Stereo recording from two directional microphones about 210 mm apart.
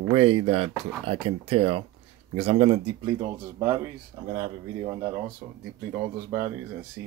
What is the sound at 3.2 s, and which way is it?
Speech, 15° right (ahead or behind).